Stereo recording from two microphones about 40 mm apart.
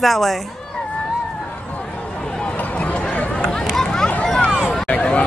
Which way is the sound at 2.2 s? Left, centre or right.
Left.